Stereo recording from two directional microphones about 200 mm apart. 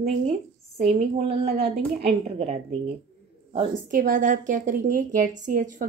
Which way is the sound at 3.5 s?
40° right (ahead or behind).